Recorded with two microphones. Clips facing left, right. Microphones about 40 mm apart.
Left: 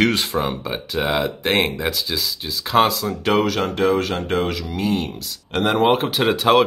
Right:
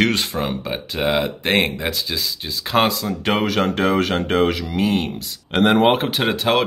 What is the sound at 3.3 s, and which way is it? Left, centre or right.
Speech, right.